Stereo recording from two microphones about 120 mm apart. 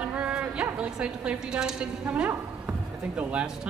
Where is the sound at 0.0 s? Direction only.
10° right (ahead or behind).